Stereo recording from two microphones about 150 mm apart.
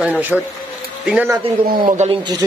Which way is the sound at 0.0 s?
10° right (ahead or behind).